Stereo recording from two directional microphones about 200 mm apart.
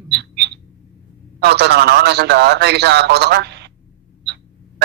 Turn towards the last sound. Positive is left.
turn(degrees=-55)  # may be behind; listen again after turning